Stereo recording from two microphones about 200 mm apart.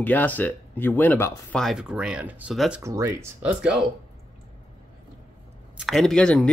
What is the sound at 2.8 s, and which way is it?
Speech, 15° right (ahead or behind).